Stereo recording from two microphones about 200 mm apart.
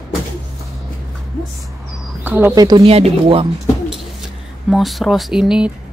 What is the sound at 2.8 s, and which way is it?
Speech, 30° right (ahead or behind).